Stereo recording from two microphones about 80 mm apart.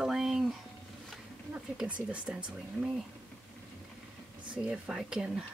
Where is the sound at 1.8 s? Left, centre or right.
Centre.